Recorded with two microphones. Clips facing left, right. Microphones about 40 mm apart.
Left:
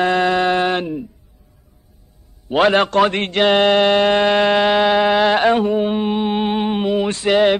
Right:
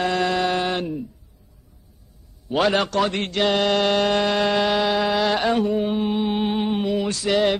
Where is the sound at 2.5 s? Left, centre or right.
Left.